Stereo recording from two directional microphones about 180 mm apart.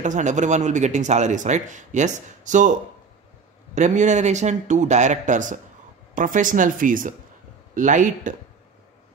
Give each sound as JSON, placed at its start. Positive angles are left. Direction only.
{"t": 0.0, "sound": "speech", "side_deg": -40}
{"t": 3.7, "sound": "speech", "side_deg": -40}